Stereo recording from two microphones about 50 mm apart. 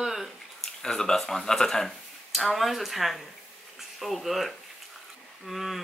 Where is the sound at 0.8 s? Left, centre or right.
Centre.